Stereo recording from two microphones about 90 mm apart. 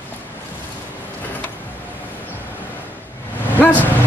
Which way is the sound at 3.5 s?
20° left (ahead or behind).